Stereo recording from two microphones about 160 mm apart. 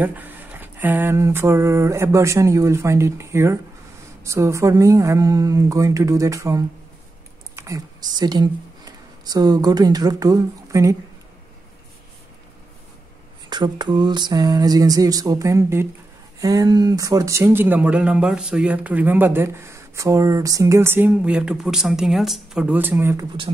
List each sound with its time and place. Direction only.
0.0 s speech: 10° right (ahead or behind)
13.5 s speech: 25° right (ahead or behind)